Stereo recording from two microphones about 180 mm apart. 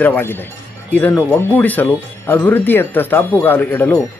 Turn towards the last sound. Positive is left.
turn(degrees=10)  # may be behind; listen again after turning